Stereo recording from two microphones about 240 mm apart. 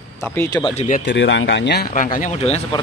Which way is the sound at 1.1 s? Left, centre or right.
Left.